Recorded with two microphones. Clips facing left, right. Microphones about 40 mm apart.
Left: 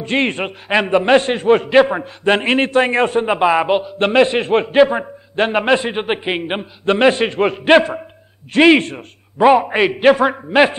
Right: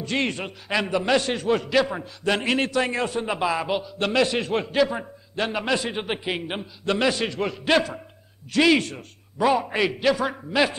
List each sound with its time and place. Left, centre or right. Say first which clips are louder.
0.0 s a man's voice: left 8 dB; left